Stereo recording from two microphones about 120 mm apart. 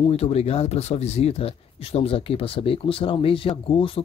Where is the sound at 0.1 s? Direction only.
60° left (ahead or behind).